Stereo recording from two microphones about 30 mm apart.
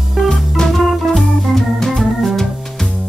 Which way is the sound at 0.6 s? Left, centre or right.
Left.